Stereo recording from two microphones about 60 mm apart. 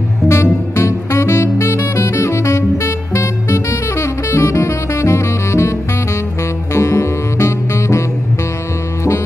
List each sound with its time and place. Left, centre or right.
0.3 s music: left
1.7 s saxophone: left
6.7 s music: left